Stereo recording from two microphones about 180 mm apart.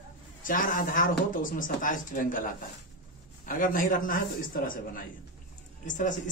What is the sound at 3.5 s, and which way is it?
Speech, 50° left (ahead or behind).